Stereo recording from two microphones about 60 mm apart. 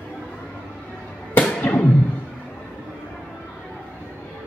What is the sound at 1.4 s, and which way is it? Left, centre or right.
Music, left.